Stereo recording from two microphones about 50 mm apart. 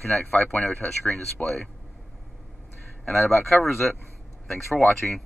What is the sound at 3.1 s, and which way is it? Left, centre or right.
Speech, centre.